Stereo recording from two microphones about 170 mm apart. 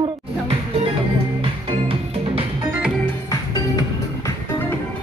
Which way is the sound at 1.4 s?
35° right (ahead or behind).